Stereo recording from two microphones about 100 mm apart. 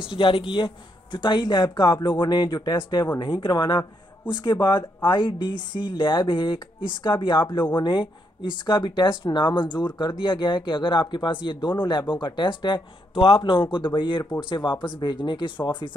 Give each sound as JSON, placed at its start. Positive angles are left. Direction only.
{"t": 0.2, "sound": "a man's voice", "side_deg": 60}